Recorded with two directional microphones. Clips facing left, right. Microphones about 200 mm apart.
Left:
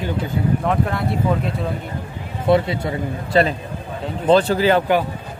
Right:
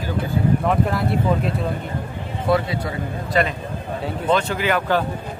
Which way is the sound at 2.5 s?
25° left (ahead or behind).